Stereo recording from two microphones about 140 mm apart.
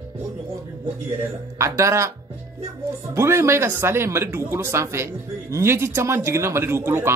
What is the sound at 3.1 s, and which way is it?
Speech, 20° right (ahead or behind).